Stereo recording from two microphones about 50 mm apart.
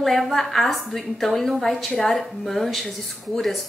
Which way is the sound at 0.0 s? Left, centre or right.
Centre.